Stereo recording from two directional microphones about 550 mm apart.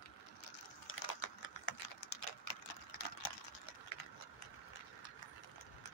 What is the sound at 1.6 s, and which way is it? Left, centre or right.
Typing, left.